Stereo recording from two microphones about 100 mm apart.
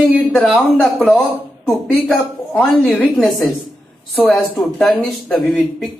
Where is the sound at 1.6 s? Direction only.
15° left (ahead or behind).